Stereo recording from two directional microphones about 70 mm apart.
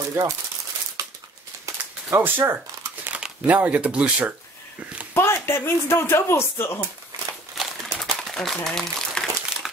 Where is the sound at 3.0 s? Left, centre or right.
Centre.